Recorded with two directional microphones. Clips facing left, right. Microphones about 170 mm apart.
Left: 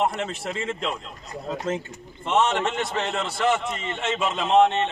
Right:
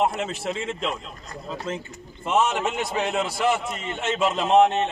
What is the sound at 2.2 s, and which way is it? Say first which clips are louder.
A man's voice: even; 5° right (ahead or behind).